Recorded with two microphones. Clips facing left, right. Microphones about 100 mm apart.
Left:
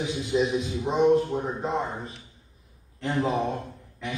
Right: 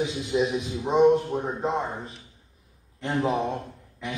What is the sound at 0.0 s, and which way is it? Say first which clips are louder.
A man's voice: even; 20° right (ahead or behind).